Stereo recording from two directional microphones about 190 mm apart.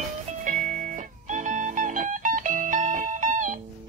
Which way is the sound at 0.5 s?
40° right (ahead or behind).